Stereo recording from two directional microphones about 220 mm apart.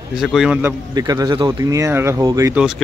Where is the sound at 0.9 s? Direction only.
15° right (ahead or behind).